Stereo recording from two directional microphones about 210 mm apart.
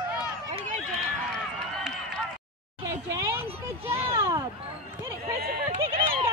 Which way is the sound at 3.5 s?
10° right (ahead or behind).